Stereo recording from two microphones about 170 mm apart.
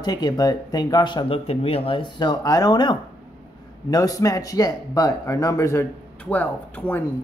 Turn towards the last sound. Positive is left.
turn(degrees=10)  # may be behind; listen again after turning